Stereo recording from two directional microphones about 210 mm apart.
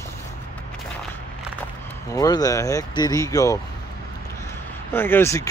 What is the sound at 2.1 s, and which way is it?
Speech, 15° left (ahead or behind).